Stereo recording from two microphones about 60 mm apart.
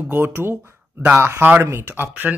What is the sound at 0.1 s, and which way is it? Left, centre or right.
Speech, right.